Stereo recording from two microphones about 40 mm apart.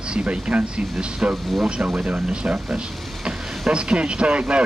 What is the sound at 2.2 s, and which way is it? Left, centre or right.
Speech, right.